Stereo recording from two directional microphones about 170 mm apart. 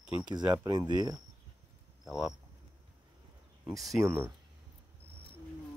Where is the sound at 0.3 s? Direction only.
25° right (ahead or behind).